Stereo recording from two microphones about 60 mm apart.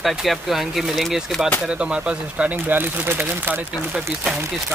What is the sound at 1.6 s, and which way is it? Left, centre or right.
Speech, centre.